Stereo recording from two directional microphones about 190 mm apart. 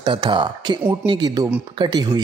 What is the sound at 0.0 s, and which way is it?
Speech, 25° right (ahead or behind).